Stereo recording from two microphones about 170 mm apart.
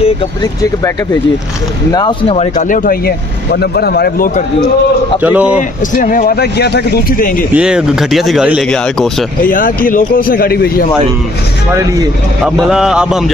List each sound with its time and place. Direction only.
1.9 s speech: 25° left (ahead or behind)
2.2 s speech: 40° left (ahead or behind); by 4.3 s 65° left (ahead or behind)
5.2 s speech: 10° right (ahead or behind)
5.6 s speech: 50° left (ahead or behind)
7.5 s speech: 5° right (ahead or behind)
9.4 s speech: 55° left (ahead or behind)
12.4 s speech: centre (ahead or behind)